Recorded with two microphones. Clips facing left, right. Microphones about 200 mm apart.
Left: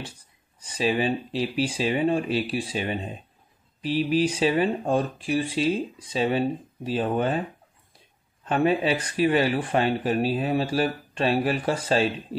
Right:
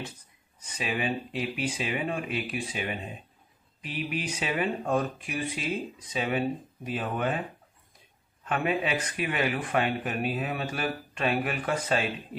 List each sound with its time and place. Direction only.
0.6 s speech: 30° left (ahead or behind)
8.5 s speech: 30° left (ahead or behind)